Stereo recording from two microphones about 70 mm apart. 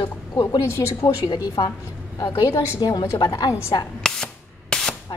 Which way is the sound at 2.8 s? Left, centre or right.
Left.